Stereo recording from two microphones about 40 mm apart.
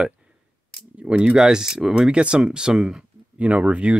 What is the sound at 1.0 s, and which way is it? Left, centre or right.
Speech, right.